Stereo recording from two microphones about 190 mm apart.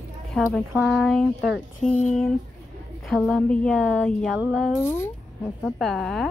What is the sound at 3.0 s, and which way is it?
A woman's voice, 5° left (ahead or behind).